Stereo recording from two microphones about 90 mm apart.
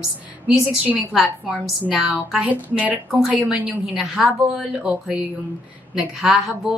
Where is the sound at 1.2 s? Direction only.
5° right (ahead or behind).